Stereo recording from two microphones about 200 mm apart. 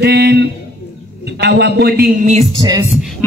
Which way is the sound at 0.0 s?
55° right (ahead or behind).